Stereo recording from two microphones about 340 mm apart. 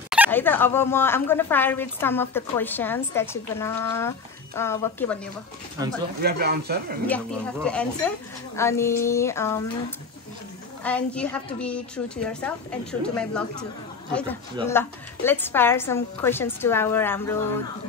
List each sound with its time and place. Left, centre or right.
0.1 s speech: centre
5.8 s speech: centre
6.2 s speech: right
7.1 s a woman's voice: centre
14.7 s speech: centre